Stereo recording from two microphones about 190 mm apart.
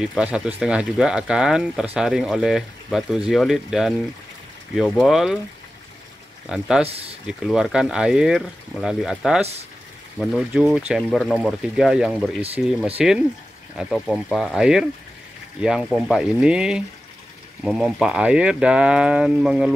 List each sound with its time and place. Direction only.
0.0 s speech: 5° right (ahead or behind)
6.5 s speech: 5° right (ahead or behind)
6.9 s speech: 30° right (ahead or behind)
7.2 s speech: centre (ahead or behind)